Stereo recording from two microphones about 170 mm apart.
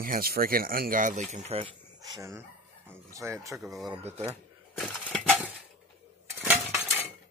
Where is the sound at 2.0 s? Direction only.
20° right (ahead or behind).